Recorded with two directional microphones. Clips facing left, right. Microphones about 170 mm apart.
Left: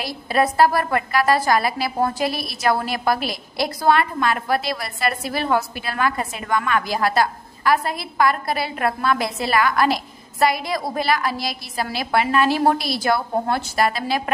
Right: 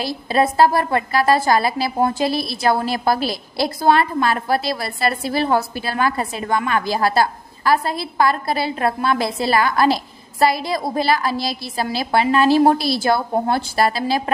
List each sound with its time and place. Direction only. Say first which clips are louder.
0.0 s a woman's voice: right 2 dB; 25° right (ahead or behind)